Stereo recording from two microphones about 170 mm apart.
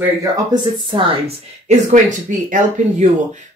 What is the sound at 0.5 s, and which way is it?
Speech, 30° right (ahead or behind).